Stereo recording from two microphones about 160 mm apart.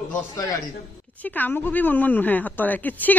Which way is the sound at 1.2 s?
10° left (ahead or behind).